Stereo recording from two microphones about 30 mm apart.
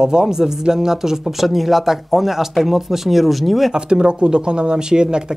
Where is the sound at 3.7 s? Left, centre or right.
Right.